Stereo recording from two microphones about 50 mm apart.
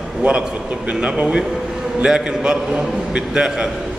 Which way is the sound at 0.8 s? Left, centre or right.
Right.